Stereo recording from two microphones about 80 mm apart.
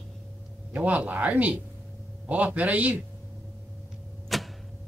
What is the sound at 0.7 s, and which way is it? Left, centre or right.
Speech, centre.